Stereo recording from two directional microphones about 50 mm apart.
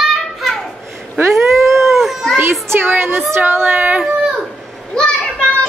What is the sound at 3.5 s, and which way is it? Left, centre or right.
Speech, right.